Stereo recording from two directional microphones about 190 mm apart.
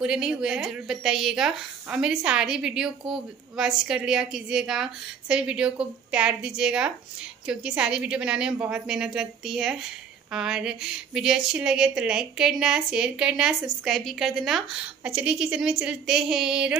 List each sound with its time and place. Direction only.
0.0 s speech: 5° right (ahead or behind)